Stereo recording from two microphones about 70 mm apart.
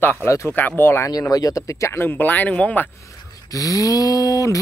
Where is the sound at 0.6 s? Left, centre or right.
Left.